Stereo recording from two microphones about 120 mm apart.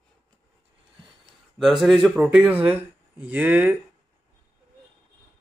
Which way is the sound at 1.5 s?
Centre (ahead or behind).